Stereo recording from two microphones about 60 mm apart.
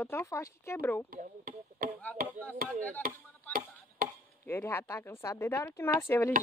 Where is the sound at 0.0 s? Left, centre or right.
Left.